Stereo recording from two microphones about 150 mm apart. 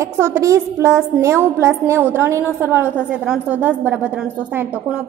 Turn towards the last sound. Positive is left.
turn(degrees=-10)  # may be behind; listen again after turning